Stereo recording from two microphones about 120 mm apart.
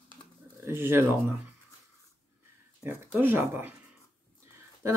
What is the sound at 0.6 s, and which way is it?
Speech, 20° right (ahead or behind).